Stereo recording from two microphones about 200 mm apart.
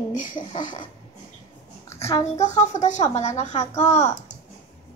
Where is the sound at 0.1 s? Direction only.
40° left (ahead or behind).